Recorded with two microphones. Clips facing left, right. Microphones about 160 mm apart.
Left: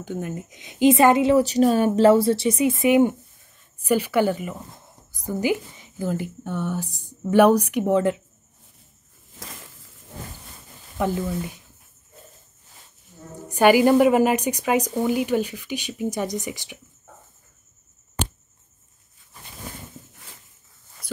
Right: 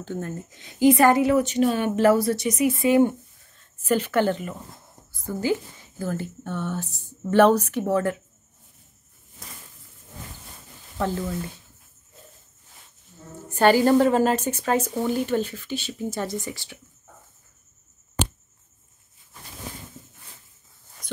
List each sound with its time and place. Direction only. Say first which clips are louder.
0.0 s a woman's voice: left 1 dB; 15° left (ahead or behind); by 1.9 s 40° left (ahead or behind)
1.9 s a woman's voice: left 3 dB; 25° left (ahead or behind)
11.0 s speech: left 2 dB; 15° left (ahead or behind)
13.5 s speech: left 2 dB; 10° left (ahead or behind)
21.0 s a sound: left 1 dB; 10° left (ahead or behind)